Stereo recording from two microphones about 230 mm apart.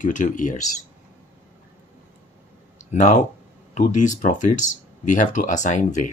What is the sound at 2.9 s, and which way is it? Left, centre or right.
Speech, left.